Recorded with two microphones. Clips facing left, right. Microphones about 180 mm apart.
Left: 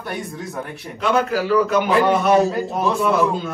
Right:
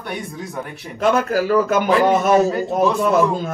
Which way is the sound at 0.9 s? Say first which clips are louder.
Right 2 dB; 45° right (ahead or behind).